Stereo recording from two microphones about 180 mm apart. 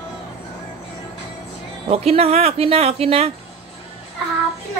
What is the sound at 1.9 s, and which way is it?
Speech, 35° right (ahead or behind).